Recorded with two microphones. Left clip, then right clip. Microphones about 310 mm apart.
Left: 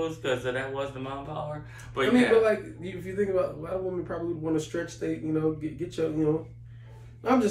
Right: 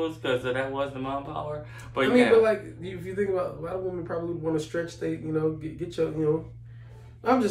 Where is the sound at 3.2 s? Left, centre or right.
Centre.